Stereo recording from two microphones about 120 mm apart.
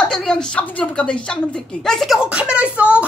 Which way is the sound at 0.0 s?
5° left (ahead or behind).